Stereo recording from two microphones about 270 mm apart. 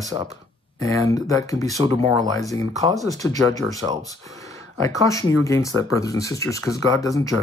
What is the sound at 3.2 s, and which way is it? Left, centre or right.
Speech, centre.